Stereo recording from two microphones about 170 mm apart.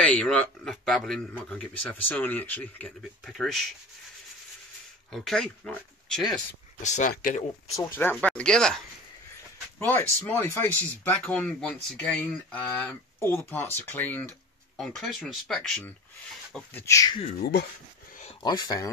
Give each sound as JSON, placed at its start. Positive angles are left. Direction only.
{"t": 0.0, "sound": "a man's voice", "side_deg": 5}
{"t": 5.1, "sound": "speech", "side_deg": 0}
{"t": 6.8, "sound": "speech", "side_deg": 45}
{"t": 7.7, "sound": "a man's voice", "side_deg": 10}
{"t": 14.8, "sound": "a man's voice", "side_deg": 0}
{"t": 17.4, "sound": "speech", "side_deg": 70}
{"t": 18.4, "sound": "speech", "side_deg": 25}